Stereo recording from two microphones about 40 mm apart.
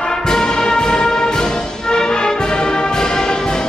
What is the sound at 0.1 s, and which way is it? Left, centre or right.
Music, centre.